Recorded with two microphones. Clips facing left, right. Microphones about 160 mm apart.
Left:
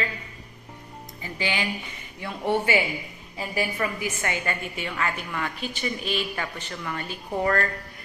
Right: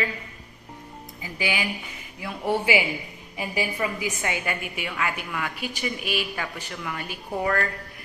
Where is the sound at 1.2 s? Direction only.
10° right (ahead or behind).